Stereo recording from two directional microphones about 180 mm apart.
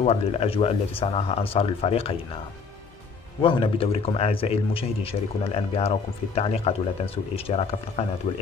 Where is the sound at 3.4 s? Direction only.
30° left (ahead or behind).